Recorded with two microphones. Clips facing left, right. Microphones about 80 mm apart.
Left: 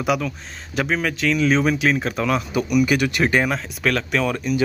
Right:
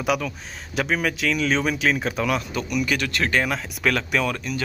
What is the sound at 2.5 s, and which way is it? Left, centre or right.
Speech, centre.